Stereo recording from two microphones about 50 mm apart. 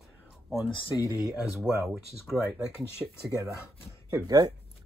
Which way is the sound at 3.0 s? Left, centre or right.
Right.